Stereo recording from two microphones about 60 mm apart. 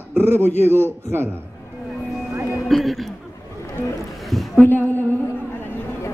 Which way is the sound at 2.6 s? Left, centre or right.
Centre.